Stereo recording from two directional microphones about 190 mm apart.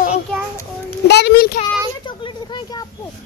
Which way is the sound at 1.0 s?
60° left (ahead or behind).